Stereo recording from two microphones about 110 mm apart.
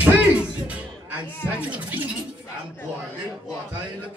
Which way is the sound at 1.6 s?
15° right (ahead or behind).